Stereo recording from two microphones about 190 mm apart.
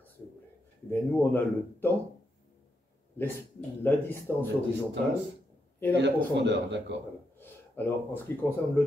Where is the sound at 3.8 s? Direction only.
10° left (ahead or behind).